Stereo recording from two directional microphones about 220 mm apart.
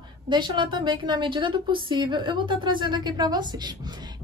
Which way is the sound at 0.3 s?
20° right (ahead or behind).